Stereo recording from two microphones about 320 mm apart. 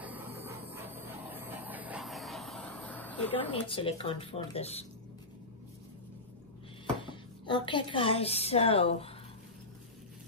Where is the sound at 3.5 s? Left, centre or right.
Centre.